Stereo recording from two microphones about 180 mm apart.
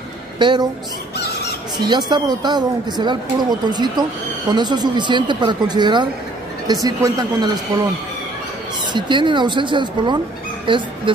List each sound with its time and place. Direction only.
0.4 s speech: 25° right (ahead or behind)
1.1 s a sound: 60° left (ahead or behind)
1.8 s speech: 25° right (ahead or behind)
8.9 s speech: 25° right (ahead or behind)